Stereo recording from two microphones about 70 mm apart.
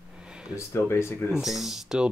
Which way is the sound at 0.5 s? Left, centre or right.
Left.